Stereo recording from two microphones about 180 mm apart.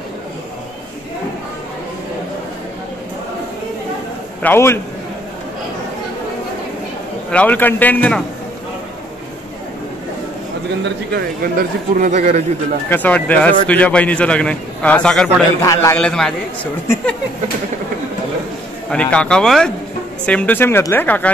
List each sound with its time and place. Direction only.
4.4 s speech: 10° left (ahead or behind)
7.2 s speech: 10° left (ahead or behind)
10.8 s speech: 60° right (ahead or behind); by 12.4 s 40° right (ahead or behind)
12.9 s speech: 10° left (ahead or behind)
15.6 s speech: 15° left (ahead or behind)
16.0 s speech: 5° left (ahead or behind)
16.8 s speech: 15° left (ahead or behind)
18.9 s speech: 5° left (ahead or behind)